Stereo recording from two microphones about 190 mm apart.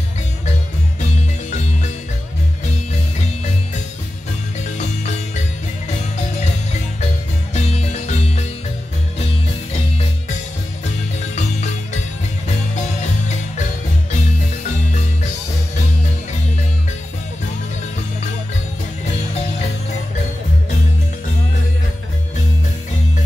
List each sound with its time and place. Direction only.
7.5 s music: 35° left (ahead or behind)